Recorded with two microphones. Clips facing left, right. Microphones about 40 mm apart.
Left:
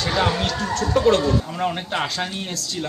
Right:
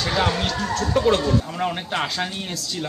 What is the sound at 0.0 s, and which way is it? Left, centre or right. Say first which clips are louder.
Speech: left 1 dB; centre.